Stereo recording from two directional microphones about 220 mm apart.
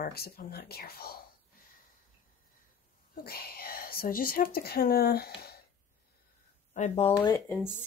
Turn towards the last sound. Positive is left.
turn(degrees=15)  # may be behind; listen again after turning